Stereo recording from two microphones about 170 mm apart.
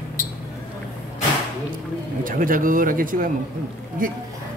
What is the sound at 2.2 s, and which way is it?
Speech, 55° right (ahead or behind).